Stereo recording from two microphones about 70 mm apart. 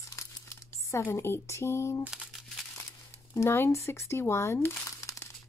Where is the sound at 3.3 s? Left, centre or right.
Left.